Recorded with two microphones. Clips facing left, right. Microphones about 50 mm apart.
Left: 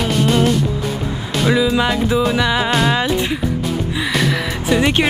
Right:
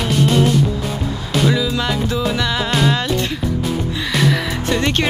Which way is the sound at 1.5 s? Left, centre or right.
Centre.